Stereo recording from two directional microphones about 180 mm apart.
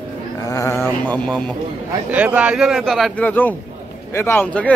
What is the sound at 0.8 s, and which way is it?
Speech, 5° left (ahead or behind).